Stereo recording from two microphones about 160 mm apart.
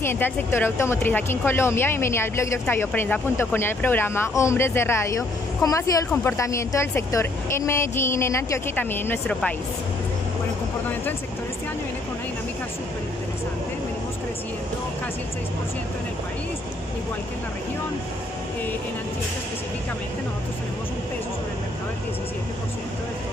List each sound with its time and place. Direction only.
0.0 s speech: 15° left (ahead or behind)